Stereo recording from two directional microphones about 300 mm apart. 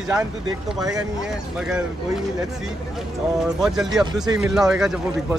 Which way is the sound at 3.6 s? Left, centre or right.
Centre.